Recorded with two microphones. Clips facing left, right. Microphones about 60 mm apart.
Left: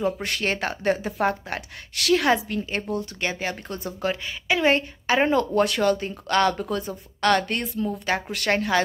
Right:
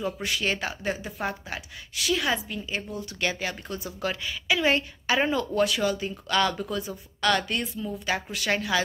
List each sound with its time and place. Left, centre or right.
0.2 s speech: left
3.2 s speech: left
8.5 s speech: left